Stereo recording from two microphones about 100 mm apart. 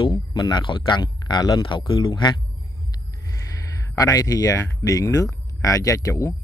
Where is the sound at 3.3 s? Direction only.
35° left (ahead or behind).